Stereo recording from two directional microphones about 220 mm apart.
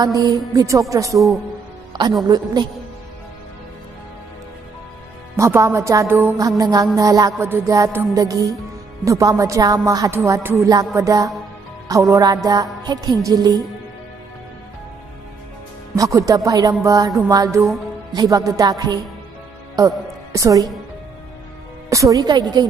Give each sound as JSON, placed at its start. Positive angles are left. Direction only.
{"t": 0.0, "sound": "music", "side_deg": -15}
{"t": 2.2, "sound": "music", "side_deg": -20}
{"t": 5.3, "sound": "music", "side_deg": -15}
{"t": 16.0, "sound": "music", "side_deg": -15}
{"t": 21.8, "sound": "music", "side_deg": -15}